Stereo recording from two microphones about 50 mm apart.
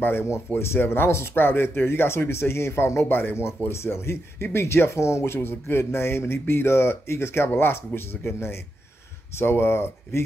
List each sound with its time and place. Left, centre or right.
0.0 s speech: left
3.1 s speech: left